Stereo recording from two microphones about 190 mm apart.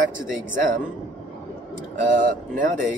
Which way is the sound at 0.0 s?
45° right (ahead or behind).